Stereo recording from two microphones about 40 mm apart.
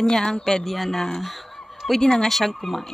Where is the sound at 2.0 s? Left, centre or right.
Centre.